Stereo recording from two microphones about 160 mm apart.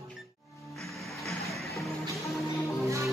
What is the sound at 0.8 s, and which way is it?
Music, centre (ahead or behind).